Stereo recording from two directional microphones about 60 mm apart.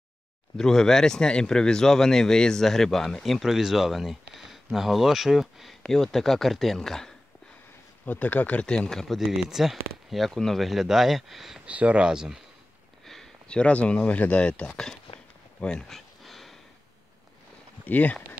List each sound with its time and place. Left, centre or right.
0.6 s speech: centre
5.8 s speech: centre
8.0 s speech: left
8.6 s speech: centre
11.6 s speech: right
13.0 s a sound: centre
13.5 s speech: centre
16.3 s sniff: centre
17.8 s speech: left